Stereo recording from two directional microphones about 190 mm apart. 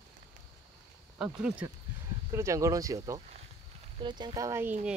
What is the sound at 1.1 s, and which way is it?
Speech, 5° right (ahead or behind).